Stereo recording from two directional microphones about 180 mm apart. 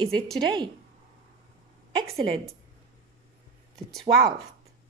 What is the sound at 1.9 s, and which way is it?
Speech, 15° right (ahead or behind).